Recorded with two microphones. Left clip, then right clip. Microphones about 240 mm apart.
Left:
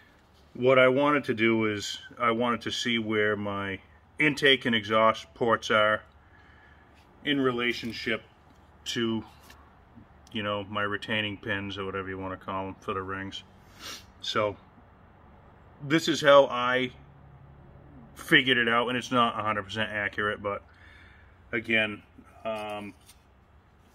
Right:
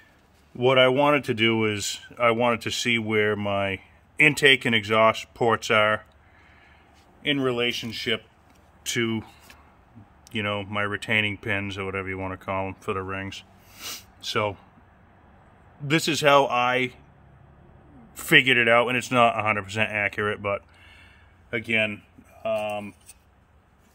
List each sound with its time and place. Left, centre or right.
0.6 s speech: right
7.2 s speech: right
10.3 s speech: right
15.9 s speech: right
18.1 s a man's voice: right
22.4 s a sound: right